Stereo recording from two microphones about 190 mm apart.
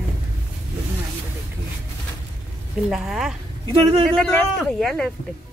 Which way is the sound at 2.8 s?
Centre (ahead or behind).